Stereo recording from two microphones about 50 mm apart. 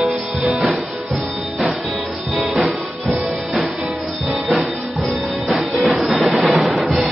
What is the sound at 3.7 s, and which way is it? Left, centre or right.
Music, centre.